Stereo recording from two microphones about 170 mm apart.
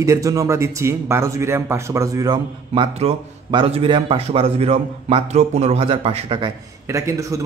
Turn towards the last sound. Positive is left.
turn(degrees=-20)  # may be behind; listen again after turning